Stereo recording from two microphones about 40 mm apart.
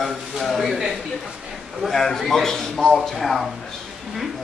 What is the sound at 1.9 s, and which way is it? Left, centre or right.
A man's voice, centre.